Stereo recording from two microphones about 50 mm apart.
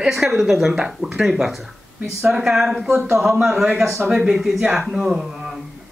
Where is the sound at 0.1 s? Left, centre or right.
Centre.